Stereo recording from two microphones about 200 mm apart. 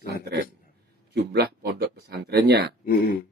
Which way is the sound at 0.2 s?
50° right (ahead or behind).